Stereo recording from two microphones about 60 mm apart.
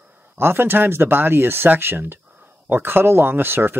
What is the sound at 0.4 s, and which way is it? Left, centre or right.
Speech, right.